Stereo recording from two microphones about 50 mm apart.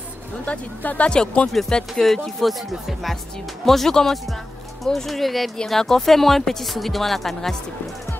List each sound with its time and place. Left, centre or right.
0.5 s speech: left
2.0 s speech: centre